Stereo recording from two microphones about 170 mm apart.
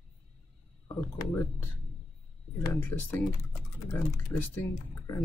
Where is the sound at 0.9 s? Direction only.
10° left (ahead or behind).